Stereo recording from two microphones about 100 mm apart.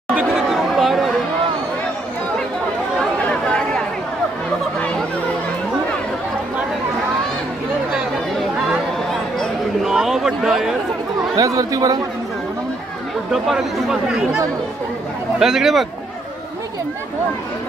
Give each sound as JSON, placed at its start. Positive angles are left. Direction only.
{"t": 0.3, "sound": "chatter", "side_deg": 0}
{"t": 3.0, "sound": "chatter", "side_deg": 10}
{"t": 9.1, "sound": "a sound", "side_deg": 0}
{"t": 11.3, "sound": "speech", "side_deg": -35}
{"t": 13.3, "sound": "speech", "side_deg": -5}